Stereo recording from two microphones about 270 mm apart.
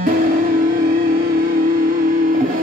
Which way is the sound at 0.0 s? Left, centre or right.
Right.